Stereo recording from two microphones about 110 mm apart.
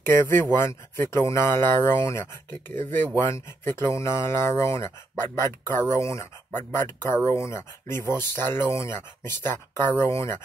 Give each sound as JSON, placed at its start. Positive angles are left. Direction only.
{"t": 0.0, "sound": "speech", "side_deg": 20}